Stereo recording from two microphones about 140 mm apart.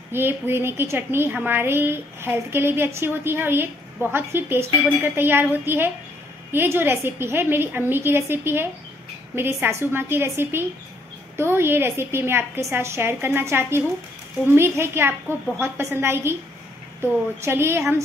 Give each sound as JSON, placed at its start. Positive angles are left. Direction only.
{"t": 0.1, "sound": "a woman's voice", "side_deg": -15}